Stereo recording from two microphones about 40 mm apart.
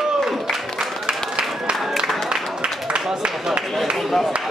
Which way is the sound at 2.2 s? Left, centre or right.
Right.